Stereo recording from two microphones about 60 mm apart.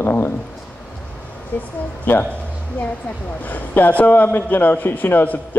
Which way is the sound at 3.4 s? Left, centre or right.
Left.